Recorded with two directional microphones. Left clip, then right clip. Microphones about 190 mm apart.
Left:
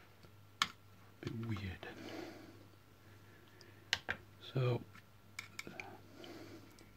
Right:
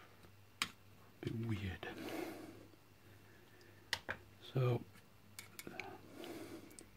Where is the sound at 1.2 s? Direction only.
25° right (ahead or behind).